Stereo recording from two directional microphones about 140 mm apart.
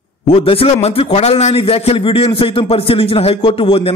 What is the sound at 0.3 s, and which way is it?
A man's voice, 45° left (ahead or behind).